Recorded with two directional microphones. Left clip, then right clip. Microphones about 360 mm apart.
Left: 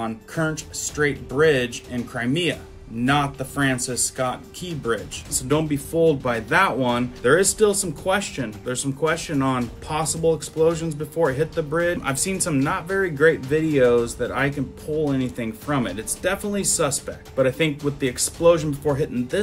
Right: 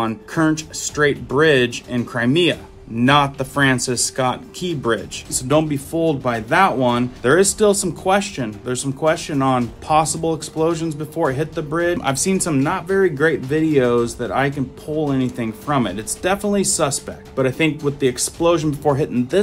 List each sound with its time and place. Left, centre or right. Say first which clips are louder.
0.0 s speech: right 6 dB; centre